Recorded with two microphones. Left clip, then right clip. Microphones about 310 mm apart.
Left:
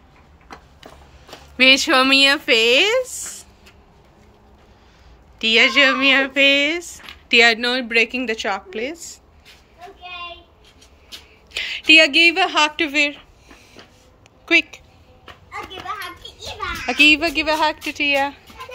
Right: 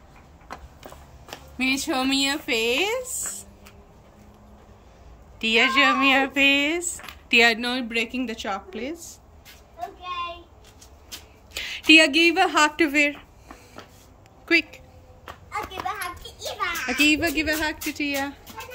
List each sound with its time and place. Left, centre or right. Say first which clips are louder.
1.6 s speech: left 11 dB; centre
5.4 s speech: left 5 dB; centre
11.5 s a woman's voice: left 3 dB; centre
14.4 s a sound: left 5 dB; centre
16.3 s a sound: even; centre
17.9 s speech: left 9 dB; centre